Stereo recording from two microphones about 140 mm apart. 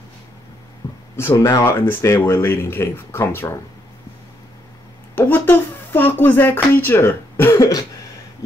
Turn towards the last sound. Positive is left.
turn(degrees=25)  # may be behind; listen again after turning